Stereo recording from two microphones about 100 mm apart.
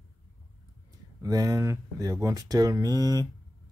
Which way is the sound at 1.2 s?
40° right (ahead or behind).